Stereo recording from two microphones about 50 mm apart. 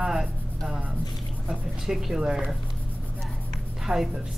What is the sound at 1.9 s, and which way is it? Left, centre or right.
Speech, centre.